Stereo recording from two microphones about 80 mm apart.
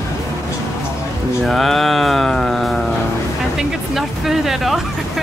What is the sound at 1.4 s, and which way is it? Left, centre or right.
Mantra, centre.